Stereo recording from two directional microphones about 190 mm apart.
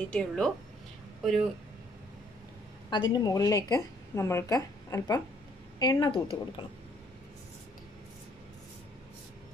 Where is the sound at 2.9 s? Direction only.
20° left (ahead or behind).